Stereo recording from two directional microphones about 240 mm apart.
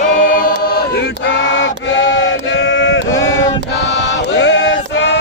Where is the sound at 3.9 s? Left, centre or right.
Left.